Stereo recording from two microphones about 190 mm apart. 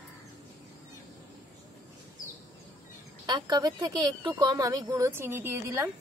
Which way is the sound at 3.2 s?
20° right (ahead or behind).